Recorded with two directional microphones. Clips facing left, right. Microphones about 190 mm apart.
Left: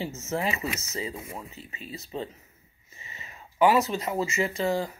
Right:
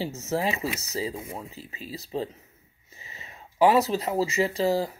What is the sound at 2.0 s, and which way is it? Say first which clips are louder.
Speech: right 4 dB; 35° right (ahead or behind).